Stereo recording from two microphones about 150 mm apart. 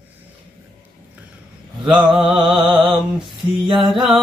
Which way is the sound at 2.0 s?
5° right (ahead or behind).